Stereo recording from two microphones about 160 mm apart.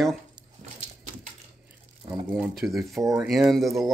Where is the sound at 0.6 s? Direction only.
50° right (ahead or behind).